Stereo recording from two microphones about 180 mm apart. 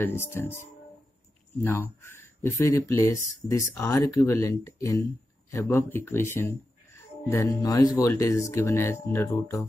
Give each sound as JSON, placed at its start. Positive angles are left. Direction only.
{"t": 0.0, "sound": "speech", "side_deg": 15}